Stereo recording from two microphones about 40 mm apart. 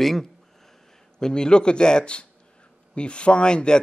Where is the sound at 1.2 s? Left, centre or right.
Centre.